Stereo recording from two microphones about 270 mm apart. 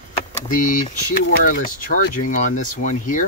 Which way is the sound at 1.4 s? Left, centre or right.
Left.